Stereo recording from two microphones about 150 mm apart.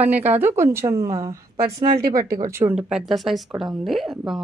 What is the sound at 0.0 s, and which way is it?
A woman's voice, 10° right (ahead or behind).